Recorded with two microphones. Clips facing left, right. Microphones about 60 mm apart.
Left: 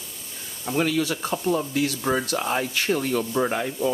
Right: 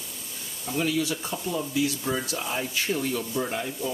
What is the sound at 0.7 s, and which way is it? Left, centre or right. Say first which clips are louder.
Speech: left 3 dB; left.